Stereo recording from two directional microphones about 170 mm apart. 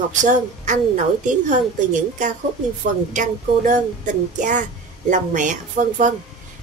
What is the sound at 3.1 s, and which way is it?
A woman's voice, 50° right (ahead or behind).